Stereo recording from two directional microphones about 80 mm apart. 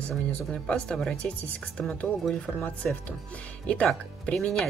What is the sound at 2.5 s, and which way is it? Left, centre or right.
Speech, centre.